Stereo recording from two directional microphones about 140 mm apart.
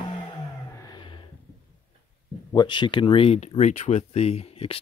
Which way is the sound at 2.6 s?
35° left (ahead or behind).